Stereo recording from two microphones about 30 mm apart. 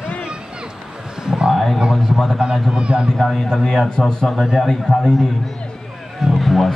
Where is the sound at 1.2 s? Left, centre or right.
Right.